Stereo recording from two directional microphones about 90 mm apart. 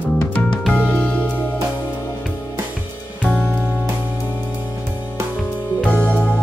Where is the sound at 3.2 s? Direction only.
15° right (ahead or behind).